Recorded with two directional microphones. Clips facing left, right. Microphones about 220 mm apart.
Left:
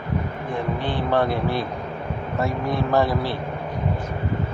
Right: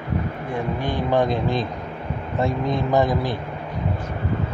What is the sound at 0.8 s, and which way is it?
Speech, 15° right (ahead or behind).